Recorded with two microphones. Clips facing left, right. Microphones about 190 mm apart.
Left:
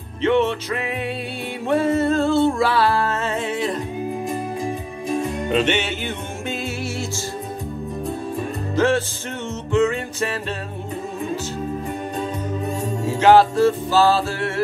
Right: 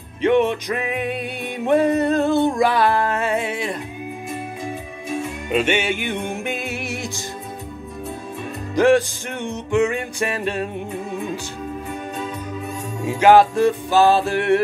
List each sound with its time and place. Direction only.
0.2 s music: 15° right (ahead or behind)
5.5 s music: 10° right (ahead or behind)
8.7 s music: 15° right (ahead or behind)
13.2 s music: 15° right (ahead or behind)